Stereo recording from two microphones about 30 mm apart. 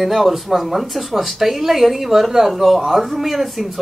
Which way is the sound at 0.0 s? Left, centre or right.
Centre.